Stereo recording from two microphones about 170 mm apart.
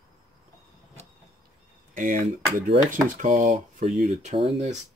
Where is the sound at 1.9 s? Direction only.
50° right (ahead or behind).